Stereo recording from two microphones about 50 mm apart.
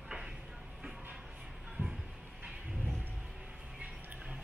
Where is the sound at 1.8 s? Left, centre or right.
Right.